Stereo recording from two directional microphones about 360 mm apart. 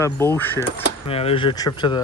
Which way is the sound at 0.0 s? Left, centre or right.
Centre.